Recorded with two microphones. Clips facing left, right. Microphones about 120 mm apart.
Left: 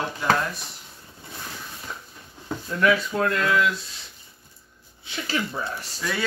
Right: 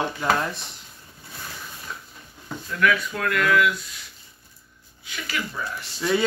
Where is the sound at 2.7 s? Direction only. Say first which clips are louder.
Left 1 dB; 30° left (ahead or behind).